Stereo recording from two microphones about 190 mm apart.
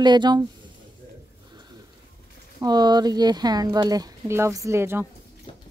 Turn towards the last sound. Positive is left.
turn(degrees=-15)  # may be behind; listen again after turning